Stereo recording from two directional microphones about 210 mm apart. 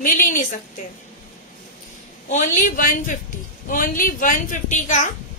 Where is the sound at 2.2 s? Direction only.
40° left (ahead or behind).